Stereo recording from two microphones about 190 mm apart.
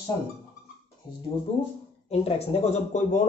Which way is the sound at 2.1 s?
30° left (ahead or behind).